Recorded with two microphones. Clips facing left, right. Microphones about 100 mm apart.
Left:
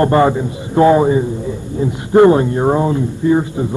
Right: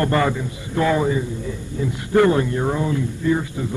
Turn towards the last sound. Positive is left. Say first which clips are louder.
# left 7 dB
turn(degrees=25)  # may be behind; listen again after turning